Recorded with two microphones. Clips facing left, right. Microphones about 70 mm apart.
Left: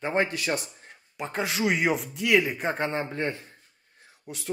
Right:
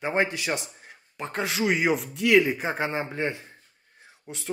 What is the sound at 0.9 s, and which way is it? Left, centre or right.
A man's voice, centre.